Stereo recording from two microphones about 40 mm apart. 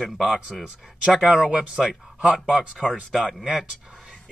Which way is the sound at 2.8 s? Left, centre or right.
Centre.